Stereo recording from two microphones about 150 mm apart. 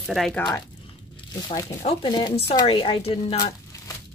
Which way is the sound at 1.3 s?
25° left (ahead or behind).